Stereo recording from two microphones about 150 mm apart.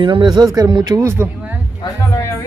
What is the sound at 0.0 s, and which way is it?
Speech, 30° right (ahead or behind).